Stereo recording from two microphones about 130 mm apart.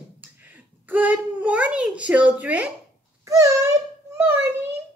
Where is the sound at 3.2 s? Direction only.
25° right (ahead or behind).